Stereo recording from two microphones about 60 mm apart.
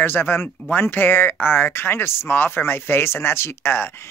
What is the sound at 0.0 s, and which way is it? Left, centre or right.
Speech, left.